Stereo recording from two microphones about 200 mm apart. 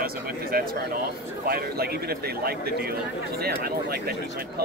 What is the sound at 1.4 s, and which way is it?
Speech, 50° right (ahead or behind).